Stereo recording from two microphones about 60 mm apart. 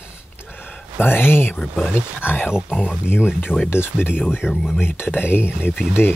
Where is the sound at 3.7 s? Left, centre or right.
Left.